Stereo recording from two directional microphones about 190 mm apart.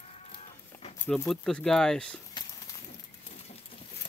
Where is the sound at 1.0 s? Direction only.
5° left (ahead or behind).